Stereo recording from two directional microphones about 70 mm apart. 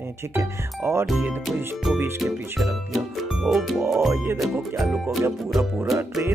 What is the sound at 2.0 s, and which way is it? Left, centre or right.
Speech, right.